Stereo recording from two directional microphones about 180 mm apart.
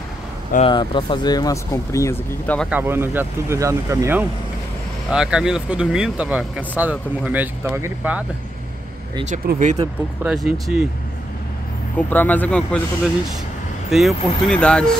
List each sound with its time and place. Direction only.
0.7 s speech: 25° left (ahead or behind); by 2.7 s 10° left (ahead or behind)
2.7 s speech: 10° right (ahead or behind)
9.5 s speech: 45° right (ahead or behind)
10.2 s speech: 5° right (ahead or behind)
12.1 s speech: 10° left (ahead or behind)
13.8 s speech: centre (ahead or behind)